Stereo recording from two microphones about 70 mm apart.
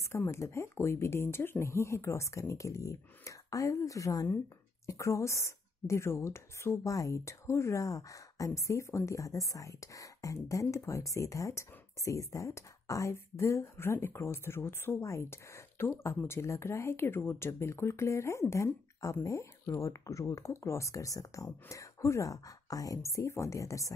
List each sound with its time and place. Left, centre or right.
0.3 s speech: left